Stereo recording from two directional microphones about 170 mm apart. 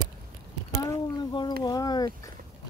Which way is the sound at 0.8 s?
25° left (ahead or behind).